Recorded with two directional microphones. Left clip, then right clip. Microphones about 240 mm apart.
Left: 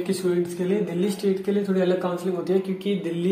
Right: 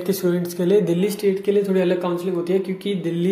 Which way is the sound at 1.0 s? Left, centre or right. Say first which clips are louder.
Right 4 dB; right.